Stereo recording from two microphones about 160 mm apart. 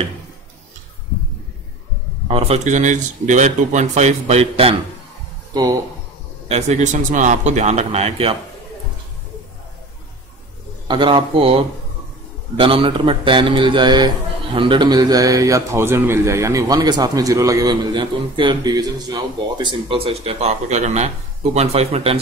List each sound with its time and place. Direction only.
2.2 s speech: 40° right (ahead or behind)
5.5 s speech: 20° right (ahead or behind)
6.5 s speech: 45° right (ahead or behind)
10.9 s a man's voice: 30° right (ahead or behind)